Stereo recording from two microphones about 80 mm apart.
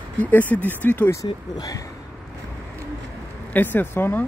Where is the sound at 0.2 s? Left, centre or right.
Left.